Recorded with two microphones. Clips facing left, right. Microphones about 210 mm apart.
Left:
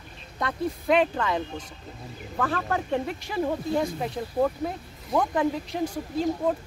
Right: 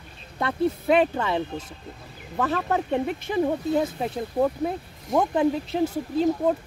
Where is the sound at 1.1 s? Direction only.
25° right (ahead or behind).